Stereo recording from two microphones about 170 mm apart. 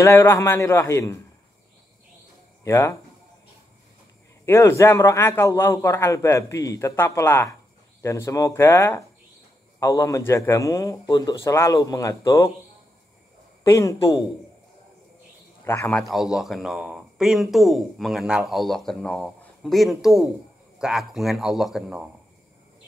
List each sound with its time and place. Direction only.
0.0 s a man's voice: 15° left (ahead or behind)
2.6 s a man's voice: 15° left (ahead or behind)
4.5 s a man's voice: 15° left (ahead or behind)
13.7 s speech: 20° left (ahead or behind)
15.6 s a man's voice: 15° left (ahead or behind)
16.0 s speech: centre (ahead or behind)